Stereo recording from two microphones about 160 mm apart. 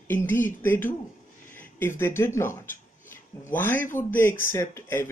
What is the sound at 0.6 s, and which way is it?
Speech, 15° left (ahead or behind).